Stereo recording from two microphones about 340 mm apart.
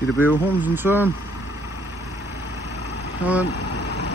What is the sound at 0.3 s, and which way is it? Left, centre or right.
Speech, centre.